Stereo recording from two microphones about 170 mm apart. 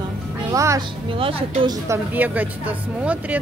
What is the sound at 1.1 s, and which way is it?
Speech, 30° right (ahead or behind).